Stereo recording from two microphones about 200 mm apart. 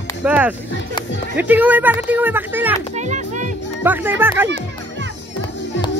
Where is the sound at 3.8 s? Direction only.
10° right (ahead or behind).